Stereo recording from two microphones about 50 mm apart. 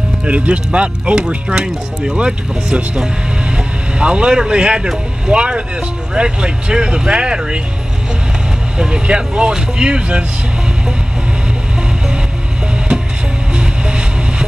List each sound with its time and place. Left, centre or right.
0.2 s speech: right
8.7 s speech: centre
13.6 s music: centre